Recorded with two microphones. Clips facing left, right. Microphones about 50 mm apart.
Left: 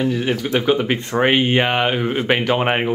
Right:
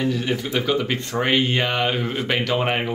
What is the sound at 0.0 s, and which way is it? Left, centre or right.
Speech, left.